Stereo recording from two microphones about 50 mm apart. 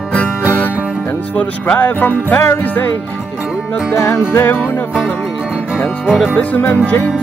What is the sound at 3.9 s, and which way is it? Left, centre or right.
Music, left.